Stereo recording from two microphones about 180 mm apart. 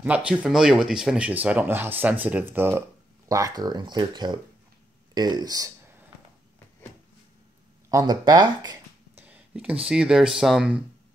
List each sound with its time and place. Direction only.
0.0 s speech: 5° right (ahead or behind); by 4.4 s 25° right (ahead or behind)
5.1 s a sound: 20° right (ahead or behind)
7.9 s speech: 20° right (ahead or behind)
9.2 s speech: 10° right (ahead or behind)